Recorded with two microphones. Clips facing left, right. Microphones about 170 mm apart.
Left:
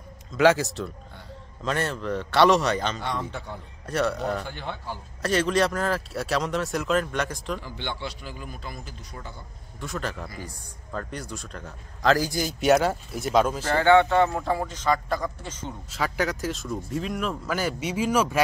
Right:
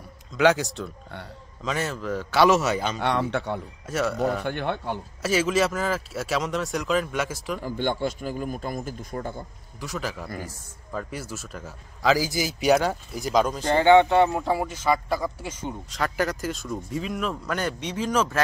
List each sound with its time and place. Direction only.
0.3 s a man's voice: centre (ahead or behind)
3.0 s speech: 70° right (ahead or behind)
3.8 s a man's voice: centre (ahead or behind)
4.5 s speech: 60° right (ahead or behind)
5.2 s a man's voice: 5° right (ahead or behind)
7.6 s a man's voice: 45° right (ahead or behind)
9.8 s a man's voice: centre (ahead or behind)
13.7 s speech: 15° right (ahead or behind)
15.9 s a man's voice: centre (ahead or behind)